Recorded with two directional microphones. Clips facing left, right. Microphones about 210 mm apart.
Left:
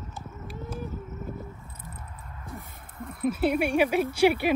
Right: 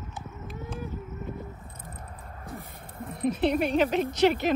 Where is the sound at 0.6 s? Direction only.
Centre (ahead or behind).